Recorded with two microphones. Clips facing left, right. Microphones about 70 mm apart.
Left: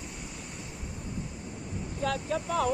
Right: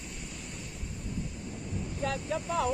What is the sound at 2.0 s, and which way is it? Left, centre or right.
Speech, left.